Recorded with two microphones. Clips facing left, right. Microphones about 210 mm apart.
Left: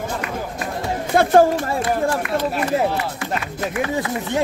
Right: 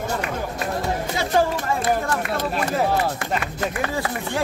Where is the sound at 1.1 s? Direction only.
55° left (ahead or behind).